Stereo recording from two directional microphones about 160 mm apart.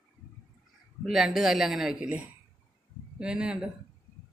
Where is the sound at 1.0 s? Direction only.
Centre (ahead or behind).